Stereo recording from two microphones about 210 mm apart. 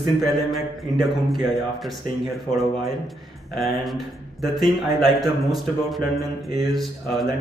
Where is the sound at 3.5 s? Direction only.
Centre (ahead or behind).